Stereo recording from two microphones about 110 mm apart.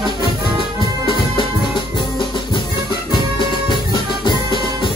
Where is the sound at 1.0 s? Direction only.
45° left (ahead or behind).